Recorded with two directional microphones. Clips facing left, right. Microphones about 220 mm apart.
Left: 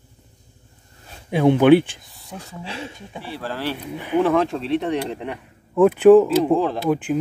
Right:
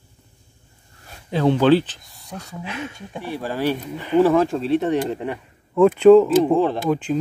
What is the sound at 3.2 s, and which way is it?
Speech, 15° right (ahead or behind).